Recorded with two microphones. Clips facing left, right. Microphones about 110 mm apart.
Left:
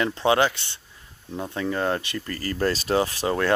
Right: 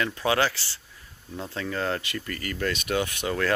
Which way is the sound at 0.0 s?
25° left (ahead or behind).